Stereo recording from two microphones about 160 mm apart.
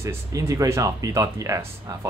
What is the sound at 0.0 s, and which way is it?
Speech, 20° right (ahead or behind).